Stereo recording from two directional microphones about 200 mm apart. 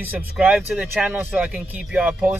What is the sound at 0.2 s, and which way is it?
Speech, 5° right (ahead or behind).